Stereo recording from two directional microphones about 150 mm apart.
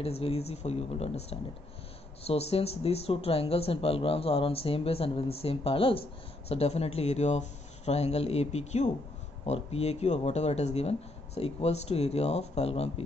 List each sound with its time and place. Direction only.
0.0 s speech: 40° left (ahead or behind)